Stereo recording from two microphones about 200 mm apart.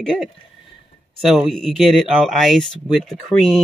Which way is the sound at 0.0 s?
5° left (ahead or behind).